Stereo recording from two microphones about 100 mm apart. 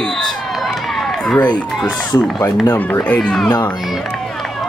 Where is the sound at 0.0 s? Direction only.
5° left (ahead or behind).